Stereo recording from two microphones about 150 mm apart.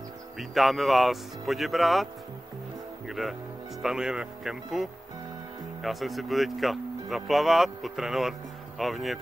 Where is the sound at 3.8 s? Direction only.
5° right (ahead or behind).